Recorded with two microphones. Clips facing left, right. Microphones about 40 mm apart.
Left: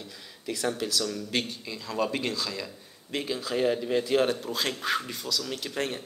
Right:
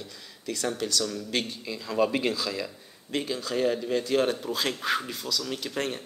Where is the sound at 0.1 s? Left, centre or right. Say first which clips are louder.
Left 2 dB; centre.